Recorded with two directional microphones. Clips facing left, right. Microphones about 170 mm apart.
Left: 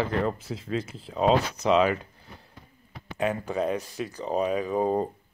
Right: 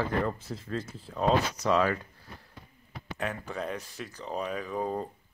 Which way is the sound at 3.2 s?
15° left (ahead or behind).